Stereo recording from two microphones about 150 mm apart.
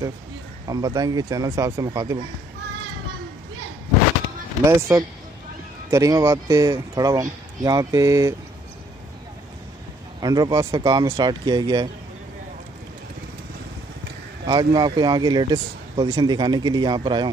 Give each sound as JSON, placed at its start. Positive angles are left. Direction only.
{"t": 0.7, "sound": "speech", "side_deg": -25}
{"t": 4.6, "sound": "speech", "side_deg": -20}
{"t": 10.2, "sound": "speech", "side_deg": -25}
{"t": 14.4, "sound": "speech", "side_deg": -30}